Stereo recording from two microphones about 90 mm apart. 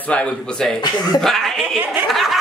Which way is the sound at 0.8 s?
50° left (ahead or behind).